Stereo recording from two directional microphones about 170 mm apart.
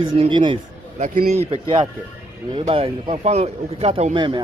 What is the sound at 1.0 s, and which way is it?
Speech, 50° right (ahead or behind).